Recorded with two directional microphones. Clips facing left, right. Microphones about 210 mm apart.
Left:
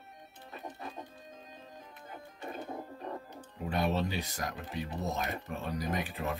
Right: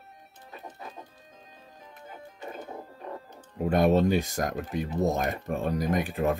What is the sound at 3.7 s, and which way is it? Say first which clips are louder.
Speech: right 10 dB; 50° right (ahead or behind).